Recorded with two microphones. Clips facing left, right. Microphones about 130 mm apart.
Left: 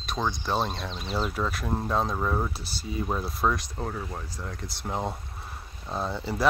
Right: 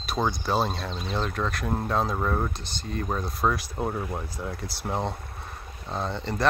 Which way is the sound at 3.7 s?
15° right (ahead or behind).